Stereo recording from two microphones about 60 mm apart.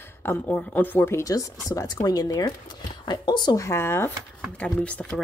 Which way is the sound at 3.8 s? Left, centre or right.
Left.